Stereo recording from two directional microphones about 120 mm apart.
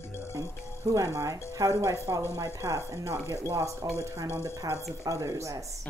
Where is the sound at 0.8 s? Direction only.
25° right (ahead or behind).